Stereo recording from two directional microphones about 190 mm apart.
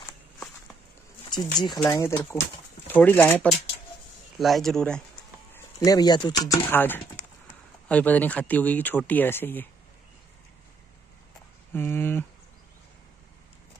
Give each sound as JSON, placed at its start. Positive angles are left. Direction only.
{"t": 1.2, "sound": "a sound", "side_deg": 20}
{"t": 1.6, "sound": "speech", "side_deg": 20}
{"t": 5.5, "sound": "speech", "side_deg": 20}
{"t": 11.7, "sound": "speech", "side_deg": 10}